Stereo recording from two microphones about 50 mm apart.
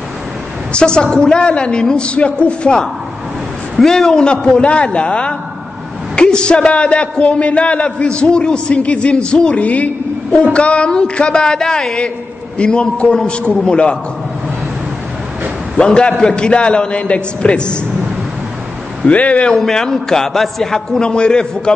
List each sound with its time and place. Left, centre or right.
0.7 s a man's voice: centre
3.7 s a man's voice: centre
15.8 s a man's voice: centre
19.0 s a man's voice: left
19.5 s a man's voice: centre